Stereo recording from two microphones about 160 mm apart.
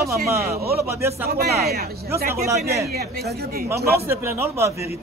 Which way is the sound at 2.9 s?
75° right (ahead or behind).